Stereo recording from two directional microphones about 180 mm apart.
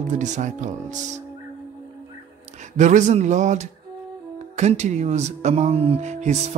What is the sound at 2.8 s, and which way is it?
Speech, 40° right (ahead or behind).